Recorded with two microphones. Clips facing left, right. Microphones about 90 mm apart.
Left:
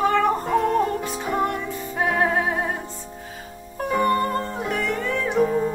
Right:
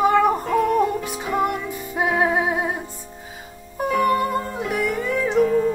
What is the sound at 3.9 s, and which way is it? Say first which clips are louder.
Music: right 1 dB; 30° left (ahead or behind).